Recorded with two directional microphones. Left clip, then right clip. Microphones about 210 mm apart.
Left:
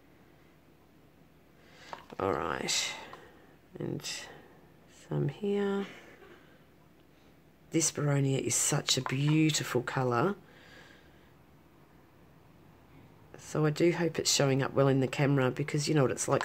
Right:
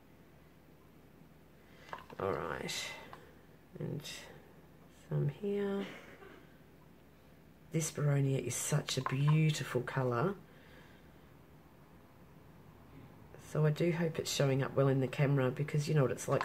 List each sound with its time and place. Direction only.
1.8 s speech: 45° left (ahead or behind)
7.7 s speech: 45° left (ahead or behind)
13.4 s speech: 45° left (ahead or behind)